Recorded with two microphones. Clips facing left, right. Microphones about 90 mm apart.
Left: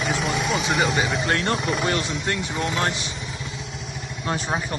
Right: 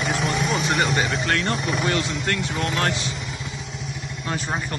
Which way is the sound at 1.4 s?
40° left (ahead or behind).